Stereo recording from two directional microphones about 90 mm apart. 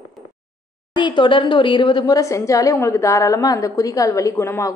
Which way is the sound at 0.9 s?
60° left (ahead or behind).